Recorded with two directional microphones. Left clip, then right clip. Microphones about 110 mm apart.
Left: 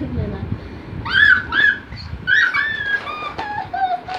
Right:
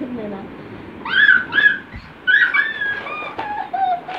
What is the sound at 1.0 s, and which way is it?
Dog, 20° left (ahead or behind).